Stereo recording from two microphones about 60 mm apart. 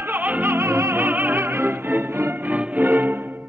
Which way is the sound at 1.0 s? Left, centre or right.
Right.